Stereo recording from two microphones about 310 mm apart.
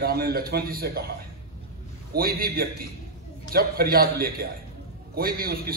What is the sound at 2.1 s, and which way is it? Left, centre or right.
A man's voice, right.